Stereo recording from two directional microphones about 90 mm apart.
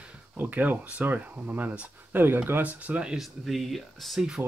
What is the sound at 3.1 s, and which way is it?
Speech, centre (ahead or behind).